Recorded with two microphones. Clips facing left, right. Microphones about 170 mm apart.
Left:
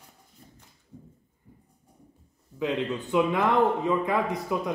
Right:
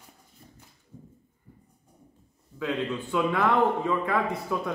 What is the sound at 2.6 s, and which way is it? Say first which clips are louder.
A man's voice: left 1 dB; 20° left (ahead or behind).